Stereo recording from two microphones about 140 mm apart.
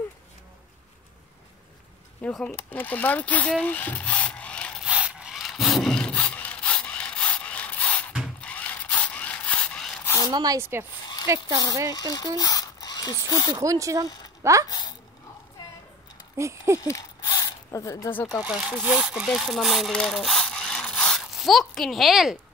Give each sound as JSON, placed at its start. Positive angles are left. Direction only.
{"t": 2.2, "sound": "speech", "side_deg": 5}
{"t": 4.8, "sound": "rub", "side_deg": -10}
{"t": 8.4, "sound": "zipper", "side_deg": 10}
{"t": 10.0, "sound": "a sound", "side_deg": 20}
{"t": 10.3, "sound": "speech", "side_deg": -30}
{"t": 10.6, "sound": "speech", "side_deg": -15}
{"t": 11.2, "sound": "speech", "side_deg": -25}
{"t": 11.9, "sound": "speech", "side_deg": 25}
{"t": 13.5, "sound": "speech", "side_deg": -25}
{"t": 14.7, "sound": "speech", "side_deg": 30}
{"t": 16.3, "sound": "speech", "side_deg": -20}
{"t": 16.8, "sound": "zipper", "side_deg": 20}
{"t": 18.4, "sound": "speech", "side_deg": -5}